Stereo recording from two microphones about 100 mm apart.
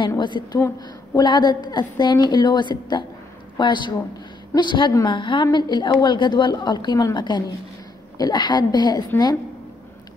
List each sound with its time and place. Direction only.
0.2 s a woman's voice: 50° left (ahead or behind)